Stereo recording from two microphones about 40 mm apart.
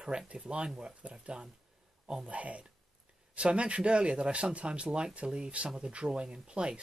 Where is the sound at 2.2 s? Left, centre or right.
Right.